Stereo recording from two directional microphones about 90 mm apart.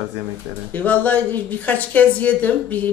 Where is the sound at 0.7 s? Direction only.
20° left (ahead or behind).